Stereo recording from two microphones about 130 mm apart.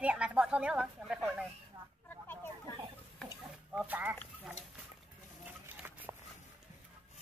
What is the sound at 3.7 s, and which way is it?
Speech, 10° right (ahead or behind).